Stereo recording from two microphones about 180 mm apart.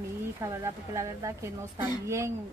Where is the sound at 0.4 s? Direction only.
15° right (ahead or behind).